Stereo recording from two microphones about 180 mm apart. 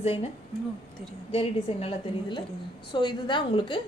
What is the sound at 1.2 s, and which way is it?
A woman's voice, 35° left (ahead or behind).